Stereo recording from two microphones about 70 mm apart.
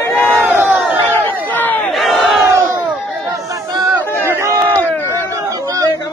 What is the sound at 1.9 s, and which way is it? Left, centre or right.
Battle cry, centre.